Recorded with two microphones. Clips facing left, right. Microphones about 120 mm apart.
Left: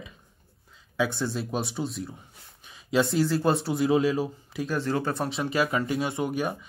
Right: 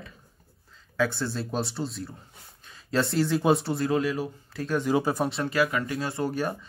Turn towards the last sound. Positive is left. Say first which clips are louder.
# even
turn(degrees=10)  # may be behind; listen again after turning